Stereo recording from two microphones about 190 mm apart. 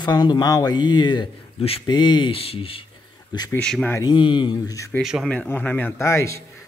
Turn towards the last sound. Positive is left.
turn(degrees=15)  # may be behind; listen again after turning